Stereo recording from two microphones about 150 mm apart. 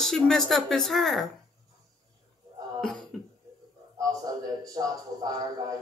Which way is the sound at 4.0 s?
25° right (ahead or behind).